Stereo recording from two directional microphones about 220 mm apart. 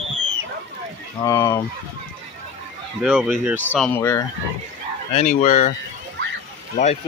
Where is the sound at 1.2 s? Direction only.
15° left (ahead or behind).